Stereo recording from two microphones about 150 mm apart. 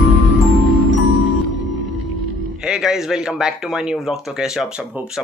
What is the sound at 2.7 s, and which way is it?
Speech, centre (ahead or behind).